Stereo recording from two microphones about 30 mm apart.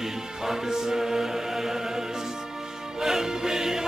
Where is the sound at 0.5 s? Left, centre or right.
Centre.